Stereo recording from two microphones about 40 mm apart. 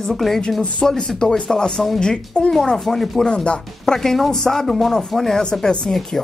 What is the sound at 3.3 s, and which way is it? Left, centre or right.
Speech, left.